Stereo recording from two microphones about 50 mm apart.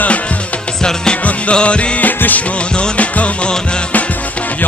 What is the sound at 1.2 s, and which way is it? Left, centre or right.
Music, left.